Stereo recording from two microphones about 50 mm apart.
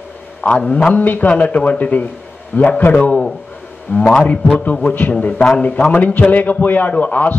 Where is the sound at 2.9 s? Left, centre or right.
Left.